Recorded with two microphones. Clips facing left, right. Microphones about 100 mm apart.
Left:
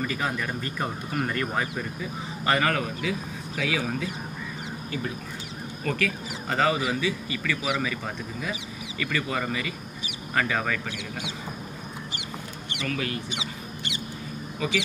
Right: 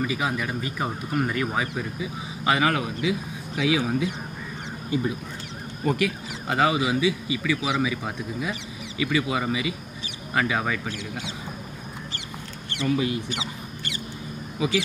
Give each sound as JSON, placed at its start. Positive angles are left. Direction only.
{"t": 0.0, "sound": "speech", "side_deg": -10}
{"t": 12.8, "sound": "speech", "side_deg": -15}
{"t": 13.3, "sound": "rodents", "side_deg": 20}